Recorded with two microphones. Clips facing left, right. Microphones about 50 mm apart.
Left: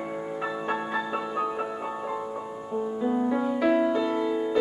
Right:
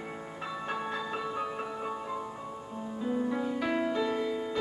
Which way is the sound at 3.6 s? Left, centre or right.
Centre.